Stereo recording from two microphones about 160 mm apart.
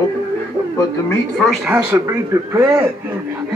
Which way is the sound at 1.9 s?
15° right (ahead or behind).